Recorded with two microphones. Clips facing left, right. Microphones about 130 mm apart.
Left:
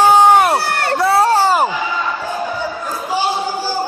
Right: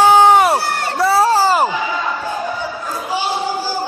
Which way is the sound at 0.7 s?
65° left (ahead or behind).